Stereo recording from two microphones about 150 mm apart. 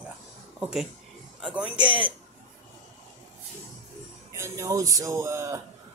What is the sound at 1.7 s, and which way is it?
Speech, 35° right (ahead or behind).